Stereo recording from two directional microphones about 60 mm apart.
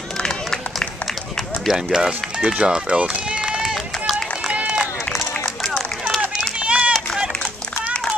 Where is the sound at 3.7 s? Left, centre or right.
Centre.